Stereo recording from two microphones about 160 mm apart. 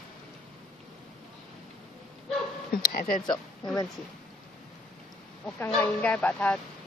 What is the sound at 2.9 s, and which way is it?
Speech, 65° left (ahead or behind).